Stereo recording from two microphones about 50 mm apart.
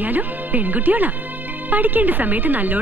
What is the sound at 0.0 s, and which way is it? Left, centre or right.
A woman's voice, right.